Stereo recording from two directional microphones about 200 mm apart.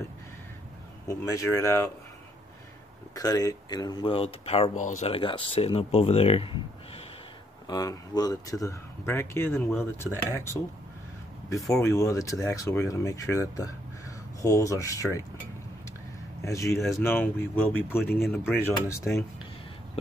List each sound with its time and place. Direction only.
1.0 s speech: 15° left (ahead or behind)
3.2 s speech: 20° left (ahead or behind)
7.6 s speech: 20° left (ahead or behind)
11.7 s speech: 15° left (ahead or behind)
16.4 s speech: 15° left (ahead or behind)
18.2 s speech: centre (ahead or behind)
18.5 s speech: 10° left (ahead or behind)